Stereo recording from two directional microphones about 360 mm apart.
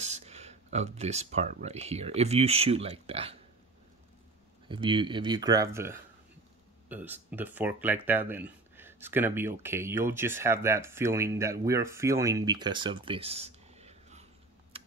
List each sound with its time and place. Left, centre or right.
0.0 s speech: centre
4.6 s speech: centre